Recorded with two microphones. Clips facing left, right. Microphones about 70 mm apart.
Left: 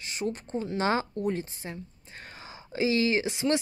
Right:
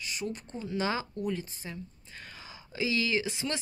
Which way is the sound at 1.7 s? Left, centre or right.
Left.